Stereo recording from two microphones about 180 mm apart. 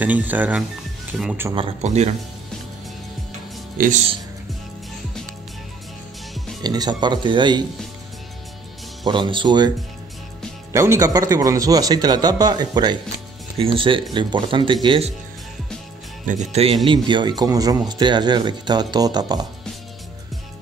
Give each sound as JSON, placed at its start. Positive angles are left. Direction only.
{"t": 0.0, "sound": "speech", "side_deg": -10}
{"t": 1.5, "sound": "speech", "side_deg": -30}
{"t": 3.7, "sound": "speech", "side_deg": -50}
{"t": 6.6, "sound": "speech", "side_deg": -20}
{"t": 9.0, "sound": "speech", "side_deg": -25}
{"t": 10.7, "sound": "speech", "side_deg": -15}
{"t": 16.3, "sound": "speech", "side_deg": -40}
{"t": 16.8, "sound": "speech", "side_deg": -25}